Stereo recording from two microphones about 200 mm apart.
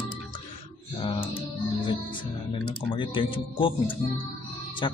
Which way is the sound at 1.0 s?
25° left (ahead or behind).